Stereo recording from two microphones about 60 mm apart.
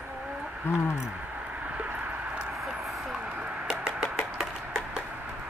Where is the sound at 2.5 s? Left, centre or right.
Centre.